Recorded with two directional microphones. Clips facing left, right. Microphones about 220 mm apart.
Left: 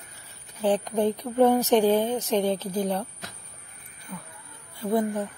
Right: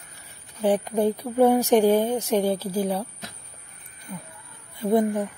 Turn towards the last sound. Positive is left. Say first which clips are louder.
# right 4 dB
turn(degrees=-20)  # may be behind; listen again after turning